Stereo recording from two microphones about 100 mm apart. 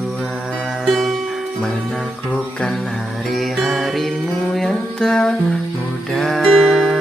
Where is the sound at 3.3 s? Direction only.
Centre (ahead or behind).